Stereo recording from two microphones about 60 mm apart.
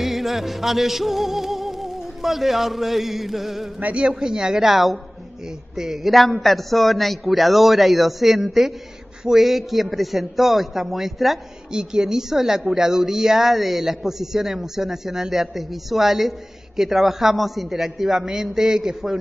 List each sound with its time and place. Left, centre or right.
0.0 s music: centre
3.8 s a woman's voice: centre